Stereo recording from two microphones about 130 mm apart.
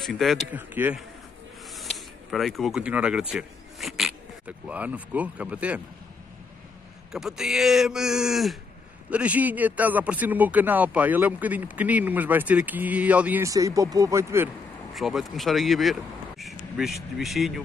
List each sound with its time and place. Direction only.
0.0 s speech: centre (ahead or behind)
0.5 s speech: 15° right (ahead or behind)
1.7 s speech: centre (ahead or behind)
7.1 s speech: 5° right (ahead or behind)
13.4 s speech: 25° right (ahead or behind)
15.0 s speech: centre (ahead or behind)